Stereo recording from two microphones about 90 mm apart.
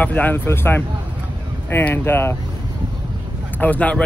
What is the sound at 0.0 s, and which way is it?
Speech, 20° left (ahead or behind).